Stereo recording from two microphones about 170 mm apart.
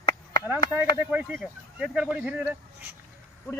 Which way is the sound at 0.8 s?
10° right (ahead or behind).